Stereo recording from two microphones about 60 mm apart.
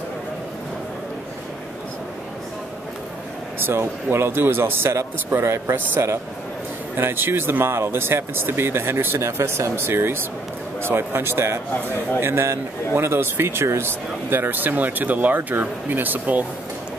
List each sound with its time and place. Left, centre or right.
3.5 s a man's voice: right